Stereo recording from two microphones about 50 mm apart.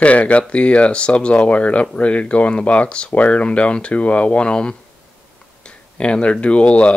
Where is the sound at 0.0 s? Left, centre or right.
Left.